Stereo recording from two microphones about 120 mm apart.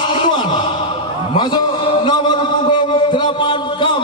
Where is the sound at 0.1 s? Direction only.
45° left (ahead or behind).